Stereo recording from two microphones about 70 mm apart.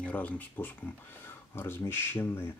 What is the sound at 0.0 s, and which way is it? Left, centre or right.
Speech, left.